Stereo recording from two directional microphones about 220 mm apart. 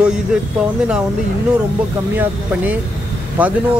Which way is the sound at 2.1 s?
10° right (ahead or behind).